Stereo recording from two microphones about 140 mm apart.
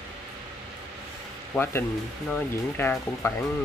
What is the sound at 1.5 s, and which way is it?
Speech, 20° left (ahead or behind).